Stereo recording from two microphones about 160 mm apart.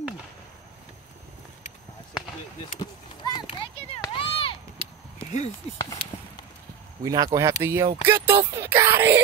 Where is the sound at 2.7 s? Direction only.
25° left (ahead or behind).